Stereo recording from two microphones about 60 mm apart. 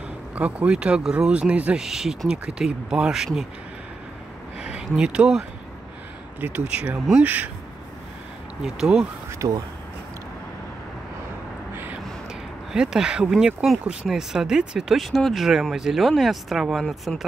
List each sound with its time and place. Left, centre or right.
0.4 s speech: centre
1.8 s speech: centre
4.6 s a sound: centre
6.6 s speech: centre
8.6 s speech: centre
9.4 s speech: right
12.7 s speech: centre
16.8 s speech: centre